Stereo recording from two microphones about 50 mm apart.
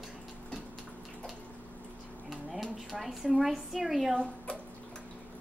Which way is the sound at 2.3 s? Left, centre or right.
Centre.